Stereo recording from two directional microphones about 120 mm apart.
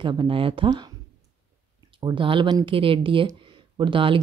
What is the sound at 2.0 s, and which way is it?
Speech, 40° right (ahead or behind).